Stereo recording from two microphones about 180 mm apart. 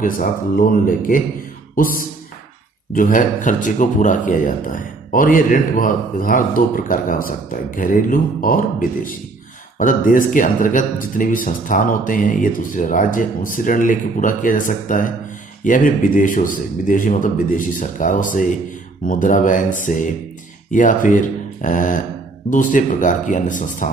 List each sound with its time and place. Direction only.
0.0 s speech: 50° left (ahead or behind)
2.9 s speech: 50° left (ahead or behind)